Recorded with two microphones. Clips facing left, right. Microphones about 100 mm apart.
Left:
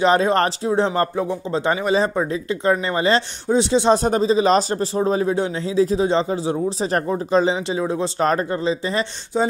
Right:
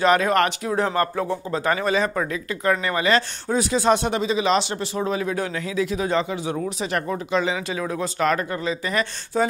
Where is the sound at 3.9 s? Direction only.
35° left (ahead or behind).